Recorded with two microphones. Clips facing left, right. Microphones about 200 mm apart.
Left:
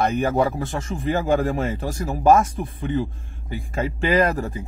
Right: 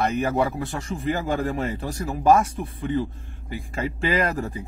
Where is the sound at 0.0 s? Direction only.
30° left (ahead or behind).